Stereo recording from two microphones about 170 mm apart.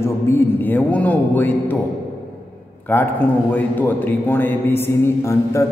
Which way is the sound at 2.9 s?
10° left (ahead or behind).